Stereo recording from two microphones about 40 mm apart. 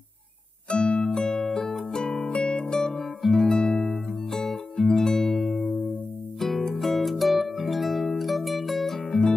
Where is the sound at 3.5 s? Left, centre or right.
Left.